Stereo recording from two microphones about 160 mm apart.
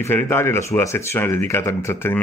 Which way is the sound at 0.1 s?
15° left (ahead or behind).